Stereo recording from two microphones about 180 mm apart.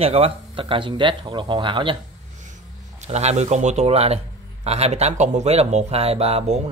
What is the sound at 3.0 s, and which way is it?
Speech, 40° right (ahead or behind).